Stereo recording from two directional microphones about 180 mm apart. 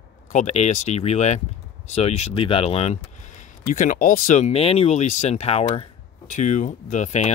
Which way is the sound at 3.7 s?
50° left (ahead or behind).